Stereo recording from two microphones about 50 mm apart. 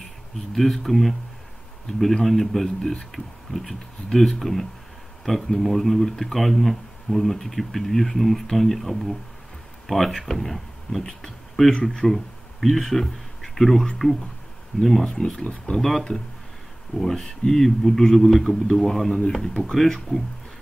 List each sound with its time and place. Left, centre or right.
0.6 s speech: centre
11.2 s a sound: centre
11.7 s speech: centre
12.1 s speech: centre
17.0 s speech: centre